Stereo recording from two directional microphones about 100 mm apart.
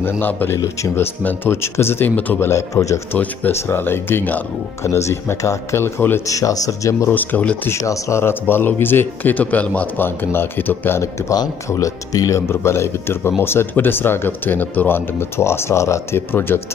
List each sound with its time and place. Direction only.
0.0 s speech: 20° left (ahead or behind)
2.5 s speech: 30° left (ahead or behind)
3.1 s speech: 20° left (ahead or behind)
6.2 s speech: 35° left (ahead or behind)
7.1 s speech: 15° left (ahead or behind)
7.7 s speech: 30° left (ahead or behind)